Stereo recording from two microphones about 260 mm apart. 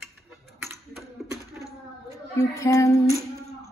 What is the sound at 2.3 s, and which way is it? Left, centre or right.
Speech, centre.